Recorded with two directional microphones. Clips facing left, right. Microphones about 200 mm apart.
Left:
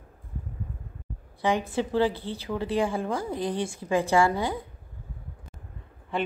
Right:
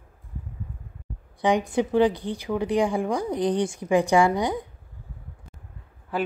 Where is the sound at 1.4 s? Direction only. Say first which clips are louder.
Right 4 dB; 15° right (ahead or behind).